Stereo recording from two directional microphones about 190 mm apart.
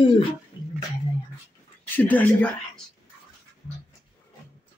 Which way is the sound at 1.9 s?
10° left (ahead or behind).